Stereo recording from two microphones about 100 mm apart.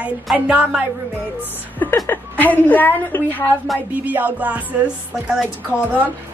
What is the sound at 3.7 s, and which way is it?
Speech, centre (ahead or behind).